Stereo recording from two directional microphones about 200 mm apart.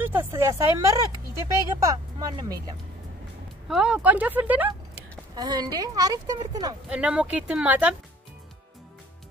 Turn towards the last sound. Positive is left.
turn(degrees=-5)  # may be behind; listen again after turning